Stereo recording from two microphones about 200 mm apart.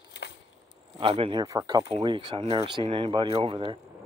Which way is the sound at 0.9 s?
25° right (ahead or behind).